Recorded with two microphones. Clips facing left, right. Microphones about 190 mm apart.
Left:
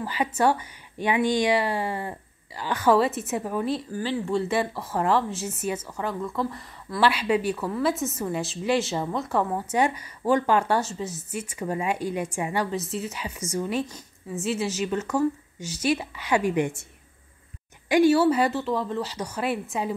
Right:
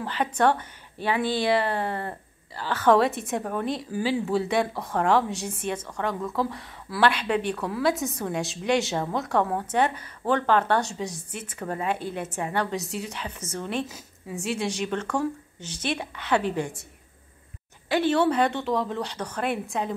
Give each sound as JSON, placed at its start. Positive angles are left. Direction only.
{"t": 0.0, "sound": "speech", "side_deg": 10}
{"t": 3.9, "sound": "speech", "side_deg": -10}
{"t": 13.8, "sound": "speech", "side_deg": -5}
{"t": 17.8, "sound": "speech", "side_deg": 10}